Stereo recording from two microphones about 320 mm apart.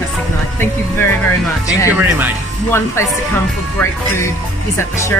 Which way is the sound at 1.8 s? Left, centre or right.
Centre.